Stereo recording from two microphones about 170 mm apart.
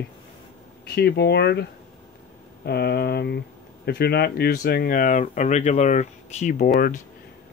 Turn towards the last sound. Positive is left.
turn(degrees=55)  # may be behind; listen again after turning